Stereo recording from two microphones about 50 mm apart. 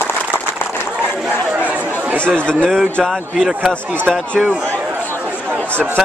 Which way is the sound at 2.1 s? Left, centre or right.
Left.